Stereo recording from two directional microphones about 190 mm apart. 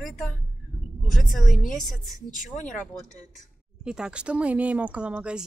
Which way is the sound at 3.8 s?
5° right (ahead or behind).